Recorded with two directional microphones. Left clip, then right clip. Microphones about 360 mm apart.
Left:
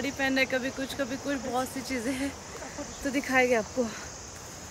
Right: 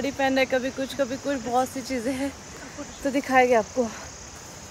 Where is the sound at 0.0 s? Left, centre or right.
Centre.